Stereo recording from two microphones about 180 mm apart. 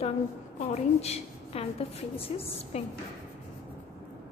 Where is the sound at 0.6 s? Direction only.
35° left (ahead or behind).